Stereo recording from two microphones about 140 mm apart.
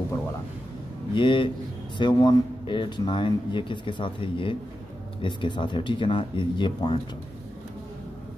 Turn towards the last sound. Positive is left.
turn(degrees=35)  # may be behind; listen again after turning